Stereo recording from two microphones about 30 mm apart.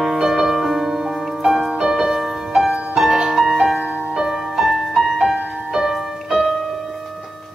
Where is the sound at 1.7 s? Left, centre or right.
Centre.